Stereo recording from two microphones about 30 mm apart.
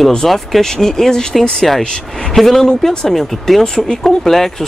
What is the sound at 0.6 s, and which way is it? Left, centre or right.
Speech, centre.